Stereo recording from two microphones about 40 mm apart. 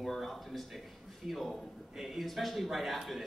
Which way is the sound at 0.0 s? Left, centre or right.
Centre.